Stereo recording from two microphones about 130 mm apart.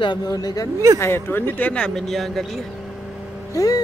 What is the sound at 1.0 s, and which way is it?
Speech, 20° left (ahead or behind).